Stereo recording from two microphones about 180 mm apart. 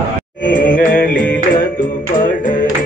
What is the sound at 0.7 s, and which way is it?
Music, 50° left (ahead or behind).